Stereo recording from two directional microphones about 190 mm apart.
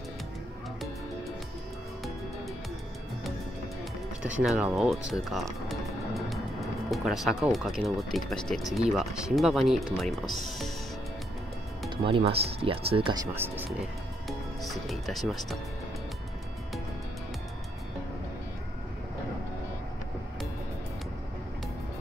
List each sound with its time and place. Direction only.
4.2 s speech: 5° right (ahead or behind)
12.0 s speech: 30° right (ahead or behind); by 13.7 s 10° right (ahead or behind)
14.6 s speech: centre (ahead or behind)